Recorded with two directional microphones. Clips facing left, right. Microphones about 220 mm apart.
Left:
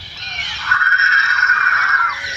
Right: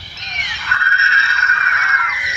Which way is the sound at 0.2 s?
20° right (ahead or behind).